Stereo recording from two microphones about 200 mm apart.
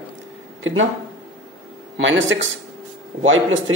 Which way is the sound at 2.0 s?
70° right (ahead or behind).